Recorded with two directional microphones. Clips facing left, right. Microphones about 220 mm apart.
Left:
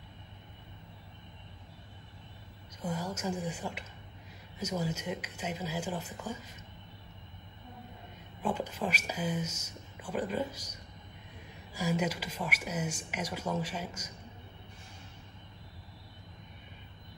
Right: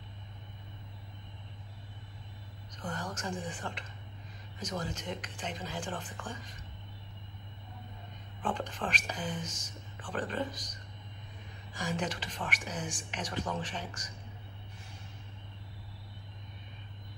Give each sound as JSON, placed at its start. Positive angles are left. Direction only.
{"t": 2.7, "sound": "speech", "side_deg": 10}
{"t": 8.4, "sound": "speech", "side_deg": 10}